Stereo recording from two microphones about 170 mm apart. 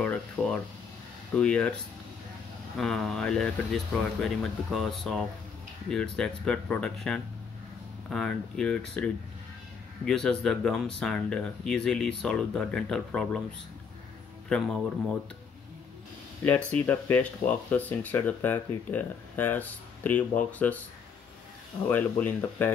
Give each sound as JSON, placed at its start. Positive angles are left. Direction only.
{"t": 0.0, "sound": "speech", "side_deg": 5}
{"t": 2.8, "sound": "speech", "side_deg": 0}
{"t": 14.5, "sound": "speech", "side_deg": 5}
{"t": 16.7, "sound": "speech", "side_deg": 10}
{"t": 21.8, "sound": "speech", "side_deg": 10}